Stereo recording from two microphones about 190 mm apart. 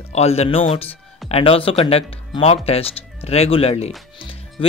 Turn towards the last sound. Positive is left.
turn(degrees=30)  # may be behind; listen again after turning